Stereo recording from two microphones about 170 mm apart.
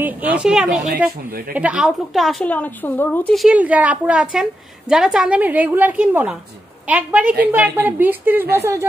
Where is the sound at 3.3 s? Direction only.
5° right (ahead or behind).